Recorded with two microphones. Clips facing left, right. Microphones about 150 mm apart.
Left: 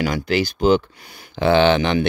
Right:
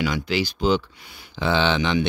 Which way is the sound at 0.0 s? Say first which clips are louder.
Left 3 dB; 45° left (ahead or behind).